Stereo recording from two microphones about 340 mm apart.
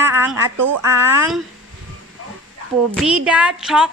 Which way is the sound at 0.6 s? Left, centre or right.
Right.